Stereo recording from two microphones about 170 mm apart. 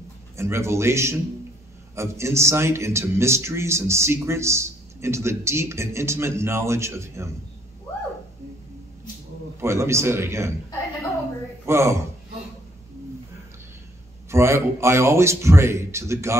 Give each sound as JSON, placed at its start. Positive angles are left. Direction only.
{"t": 0.4, "sound": "a man's voice", "side_deg": -15}
{"t": 9.6, "sound": "a man's voice", "side_deg": -15}
{"t": 11.6, "sound": "a man's voice", "side_deg": -15}
{"t": 14.3, "sound": "a man's voice", "side_deg": -15}